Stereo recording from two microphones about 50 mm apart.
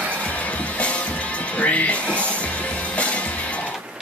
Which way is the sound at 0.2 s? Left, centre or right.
Left.